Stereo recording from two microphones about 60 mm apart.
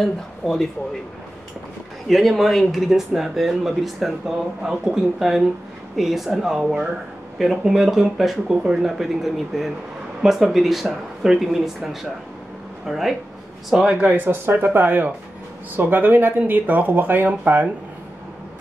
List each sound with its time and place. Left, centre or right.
0.0 s speech: centre
2.0 s speech: centre
14.0 s speech: right